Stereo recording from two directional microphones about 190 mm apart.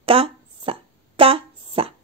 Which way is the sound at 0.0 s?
30° right (ahead or behind).